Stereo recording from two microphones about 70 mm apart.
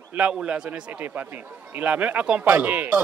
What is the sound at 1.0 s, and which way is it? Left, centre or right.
Speech, right.